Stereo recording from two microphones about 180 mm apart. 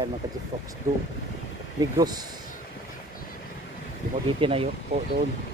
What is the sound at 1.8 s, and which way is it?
Speech, 20° right (ahead or behind).